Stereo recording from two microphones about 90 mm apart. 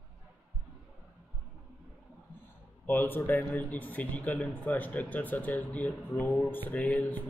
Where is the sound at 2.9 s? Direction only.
20° left (ahead or behind).